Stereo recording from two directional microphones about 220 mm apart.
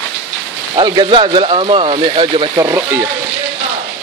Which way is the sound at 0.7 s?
20° right (ahead or behind).